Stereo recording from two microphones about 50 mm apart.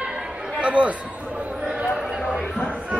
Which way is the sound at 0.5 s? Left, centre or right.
Right.